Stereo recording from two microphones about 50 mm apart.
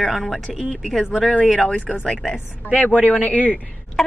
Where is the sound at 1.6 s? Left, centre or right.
Left.